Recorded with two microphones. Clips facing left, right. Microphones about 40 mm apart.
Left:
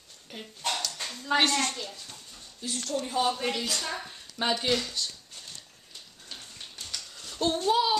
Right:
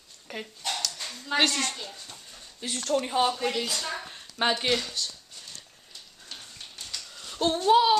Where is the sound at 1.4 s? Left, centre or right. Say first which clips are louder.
Even; left.